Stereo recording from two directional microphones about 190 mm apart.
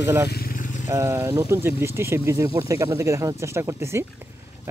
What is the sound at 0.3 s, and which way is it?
Vehicle, 50° left (ahead or behind).